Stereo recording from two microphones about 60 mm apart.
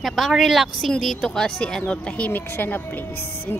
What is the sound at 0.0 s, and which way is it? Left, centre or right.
Speech, centre.